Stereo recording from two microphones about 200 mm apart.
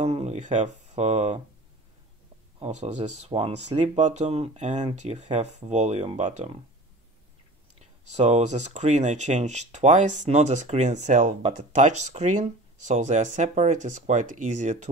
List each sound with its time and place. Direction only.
0.0 s speech: 35° right (ahead or behind)
2.6 s speech: 35° right (ahead or behind)
7.8 s speech: 35° right (ahead or behind)